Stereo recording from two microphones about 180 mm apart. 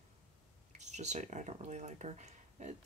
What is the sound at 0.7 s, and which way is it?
Speech, 40° right (ahead or behind).